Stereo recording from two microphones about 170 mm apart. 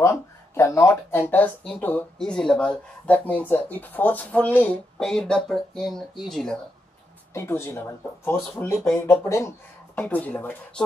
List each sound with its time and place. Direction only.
0.0 s a sound: 15° left (ahead or behind)
1.3 s speech: 5° left (ahead or behind)
7.3 s speech: 15° left (ahead or behind)